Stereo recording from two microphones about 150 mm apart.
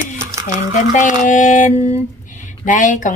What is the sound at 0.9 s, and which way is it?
A woman's voice, 60° left (ahead or behind).